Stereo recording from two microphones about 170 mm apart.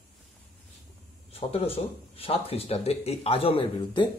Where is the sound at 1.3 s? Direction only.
35° left (ahead or behind).